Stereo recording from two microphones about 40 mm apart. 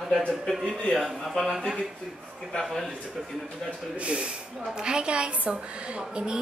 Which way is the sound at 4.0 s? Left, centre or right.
Right.